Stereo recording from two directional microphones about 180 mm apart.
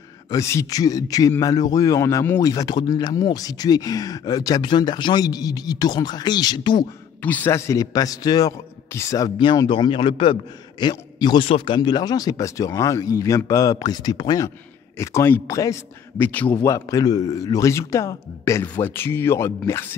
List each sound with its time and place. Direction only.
0.3 s speech: 15° left (ahead or behind)
7.2 s speech: 10° left (ahead or behind)
15.0 s speech: 15° left (ahead or behind)
16.4 s speech: 20° left (ahead or behind)